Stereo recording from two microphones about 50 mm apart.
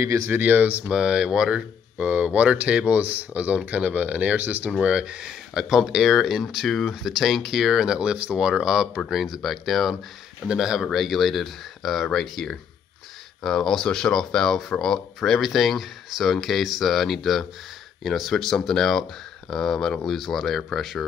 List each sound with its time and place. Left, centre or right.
0.3 s speech: right
0.9 s speech: centre
4.6 s speech: centre
10.5 s speech: centre
20.1 s speech: centre